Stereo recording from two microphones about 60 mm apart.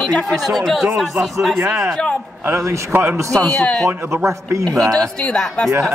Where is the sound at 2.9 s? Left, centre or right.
Right.